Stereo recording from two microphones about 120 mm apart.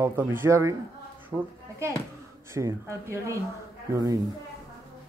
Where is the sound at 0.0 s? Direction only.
20° right (ahead or behind).